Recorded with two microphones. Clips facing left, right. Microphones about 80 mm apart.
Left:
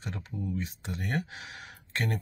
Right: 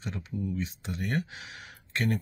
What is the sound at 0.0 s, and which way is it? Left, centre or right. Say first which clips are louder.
Speech: right 2 dB; left.